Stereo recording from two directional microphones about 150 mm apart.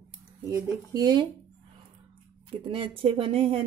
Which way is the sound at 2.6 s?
35° right (ahead or behind).